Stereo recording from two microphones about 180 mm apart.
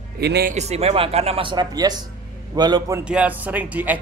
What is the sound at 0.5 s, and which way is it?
A man's voice, 35° right (ahead or behind).